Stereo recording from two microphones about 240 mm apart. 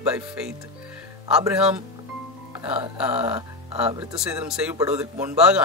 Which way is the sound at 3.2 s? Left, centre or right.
Right.